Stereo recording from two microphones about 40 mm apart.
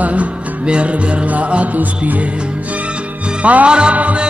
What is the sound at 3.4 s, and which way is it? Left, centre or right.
Music, right.